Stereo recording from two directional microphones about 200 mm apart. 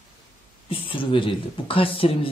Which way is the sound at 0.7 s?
25° left (ahead or behind).